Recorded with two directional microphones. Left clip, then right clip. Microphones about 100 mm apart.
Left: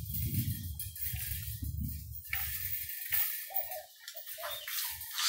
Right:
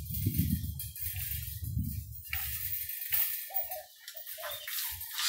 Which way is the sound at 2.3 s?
30° left (ahead or behind).